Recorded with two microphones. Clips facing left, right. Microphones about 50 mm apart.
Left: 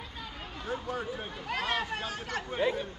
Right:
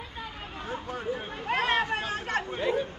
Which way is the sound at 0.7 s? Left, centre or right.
Centre.